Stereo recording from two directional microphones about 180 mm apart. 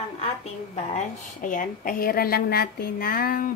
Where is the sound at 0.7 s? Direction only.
40° left (ahead or behind).